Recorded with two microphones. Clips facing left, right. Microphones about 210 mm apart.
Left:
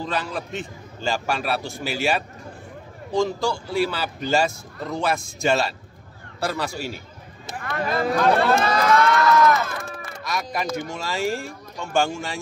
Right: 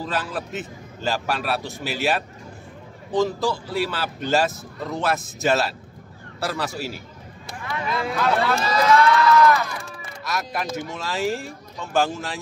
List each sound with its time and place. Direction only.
0.0 s a man's voice: 5° right (ahead or behind)
7.6 s speech: 50° left (ahead or behind)
10.2 s a man's voice: centre (ahead or behind)